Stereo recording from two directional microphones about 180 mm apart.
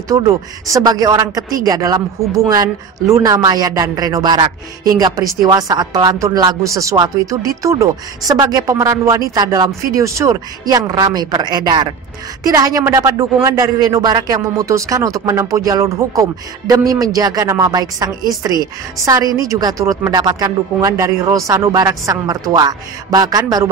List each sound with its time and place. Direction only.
0.7 s a woman's voice: 20° right (ahead or behind)